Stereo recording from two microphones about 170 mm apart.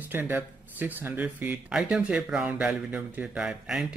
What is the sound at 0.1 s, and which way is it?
Speech, 10° right (ahead or behind).